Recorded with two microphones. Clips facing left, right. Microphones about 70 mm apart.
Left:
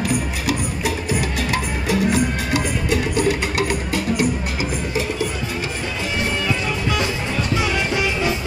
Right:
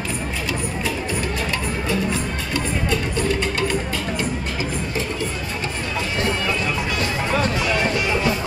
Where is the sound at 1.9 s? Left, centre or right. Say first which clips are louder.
Left 6 dB; left.